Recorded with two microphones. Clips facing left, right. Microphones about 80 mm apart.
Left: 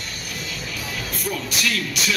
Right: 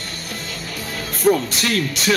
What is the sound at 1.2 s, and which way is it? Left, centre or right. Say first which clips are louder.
Speech: right 11 dB; right.